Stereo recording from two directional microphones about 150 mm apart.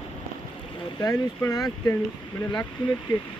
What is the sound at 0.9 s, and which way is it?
Speech, 25° left (ahead or behind).